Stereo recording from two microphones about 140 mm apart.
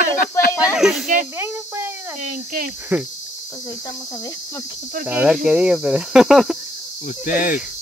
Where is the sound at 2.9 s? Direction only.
15° right (ahead or behind).